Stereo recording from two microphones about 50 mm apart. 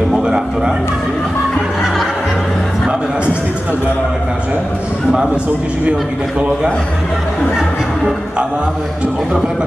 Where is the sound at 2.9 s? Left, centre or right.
Centre.